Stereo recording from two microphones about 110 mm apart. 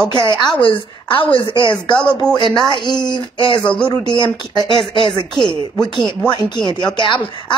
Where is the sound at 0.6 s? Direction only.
50° left (ahead or behind).